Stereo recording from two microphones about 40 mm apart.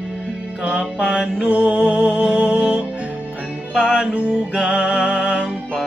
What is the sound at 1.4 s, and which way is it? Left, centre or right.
Music, right.